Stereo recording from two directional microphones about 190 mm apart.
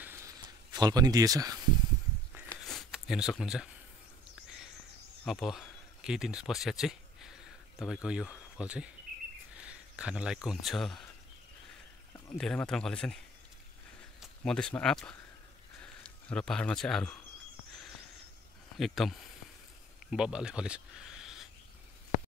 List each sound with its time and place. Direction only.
0.0 s a sound: 15° right (ahead or behind)
2.5 s a sound: centre (ahead or behind)
5.2 s speech: centre (ahead or behind)
12.4 s speech: 5° left (ahead or behind)
14.2 s speech: 5° left (ahead or behind)
18.8 s speech: centre (ahead or behind)